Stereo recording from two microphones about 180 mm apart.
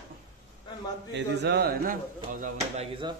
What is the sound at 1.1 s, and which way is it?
Speech, 70° right (ahead or behind).